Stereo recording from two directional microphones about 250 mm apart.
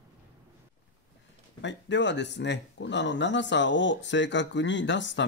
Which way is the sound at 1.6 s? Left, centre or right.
Left.